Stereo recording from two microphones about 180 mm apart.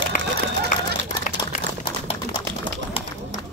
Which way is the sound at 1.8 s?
30° left (ahead or behind).